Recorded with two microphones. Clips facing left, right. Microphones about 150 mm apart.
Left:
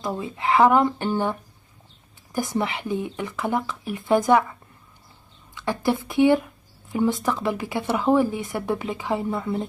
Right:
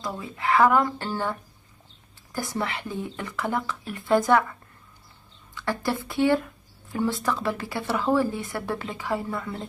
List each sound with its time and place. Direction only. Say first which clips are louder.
0.0 s speech: left 3 dB; 20° left (ahead or behind)